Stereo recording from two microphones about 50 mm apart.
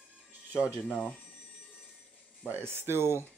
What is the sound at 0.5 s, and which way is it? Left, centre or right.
Speech, right.